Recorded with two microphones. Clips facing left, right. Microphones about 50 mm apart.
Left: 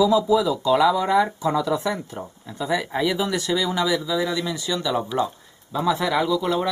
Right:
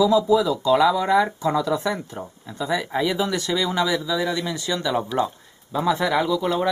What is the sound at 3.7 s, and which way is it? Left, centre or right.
Speech, right.